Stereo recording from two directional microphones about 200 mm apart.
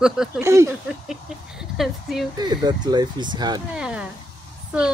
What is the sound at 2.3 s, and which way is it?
Speech, 20° right (ahead or behind).